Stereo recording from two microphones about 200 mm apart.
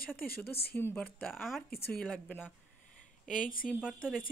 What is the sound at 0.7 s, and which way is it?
A woman's voice, 10° left (ahead or behind).